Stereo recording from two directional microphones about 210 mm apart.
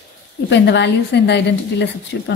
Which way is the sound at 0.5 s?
55° left (ahead or behind).